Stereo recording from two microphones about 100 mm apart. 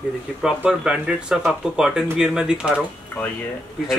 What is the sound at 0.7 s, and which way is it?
Speech, 5° right (ahead or behind).